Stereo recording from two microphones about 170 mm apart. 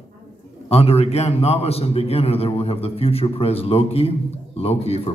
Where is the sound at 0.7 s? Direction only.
35° left (ahead or behind).